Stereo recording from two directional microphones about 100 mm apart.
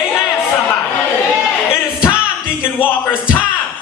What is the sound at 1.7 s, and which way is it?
Music, 25° left (ahead or behind).